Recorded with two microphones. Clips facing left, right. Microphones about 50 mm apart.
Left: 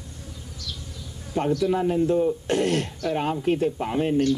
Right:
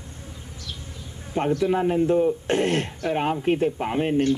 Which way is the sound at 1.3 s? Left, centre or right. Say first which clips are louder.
Right 1 dB; right.